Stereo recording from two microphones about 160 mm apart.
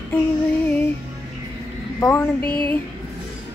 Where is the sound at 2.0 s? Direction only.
10° left (ahead or behind).